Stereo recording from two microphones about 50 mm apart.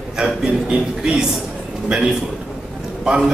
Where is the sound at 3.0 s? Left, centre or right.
Centre.